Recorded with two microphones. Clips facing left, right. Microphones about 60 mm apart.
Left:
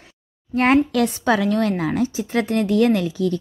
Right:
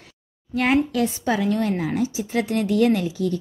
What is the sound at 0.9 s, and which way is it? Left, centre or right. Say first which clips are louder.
A woman's voice: left 3 dB; left.